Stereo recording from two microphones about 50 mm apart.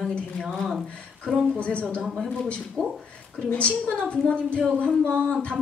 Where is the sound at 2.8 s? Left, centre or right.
Centre.